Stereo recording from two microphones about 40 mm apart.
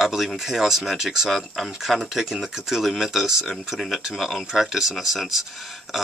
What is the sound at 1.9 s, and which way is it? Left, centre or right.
Speech, centre.